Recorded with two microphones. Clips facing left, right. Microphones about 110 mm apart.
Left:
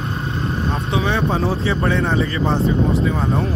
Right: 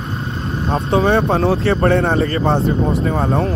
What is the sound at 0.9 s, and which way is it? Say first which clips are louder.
Speech: right 6 dB; 50° right (ahead or behind).